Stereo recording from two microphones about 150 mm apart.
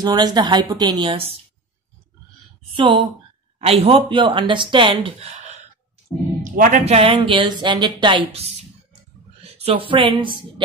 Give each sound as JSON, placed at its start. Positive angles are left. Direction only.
{"t": 0.0, "sound": "a woman's voice", "side_deg": -25}
{"t": 2.7, "sound": "speech", "side_deg": -35}
{"t": 6.4, "sound": "a man's voice", "side_deg": -65}
{"t": 6.9, "sound": "a woman's voice", "side_deg": -35}